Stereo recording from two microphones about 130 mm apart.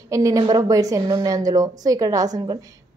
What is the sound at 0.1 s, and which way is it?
A woman's voice, 25° right (ahead or behind).